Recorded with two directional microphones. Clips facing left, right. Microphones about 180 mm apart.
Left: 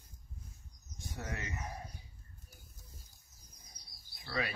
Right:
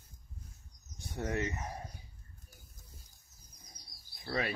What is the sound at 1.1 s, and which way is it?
Speech, 30° right (ahead or behind).